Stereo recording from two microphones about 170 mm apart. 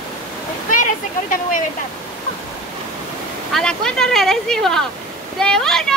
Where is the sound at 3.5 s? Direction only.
5° left (ahead or behind).